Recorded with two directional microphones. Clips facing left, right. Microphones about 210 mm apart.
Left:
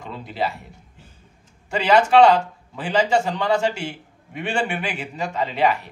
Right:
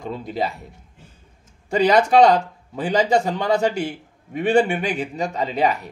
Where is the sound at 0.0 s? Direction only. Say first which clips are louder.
Right 2 dB; 40° right (ahead or behind).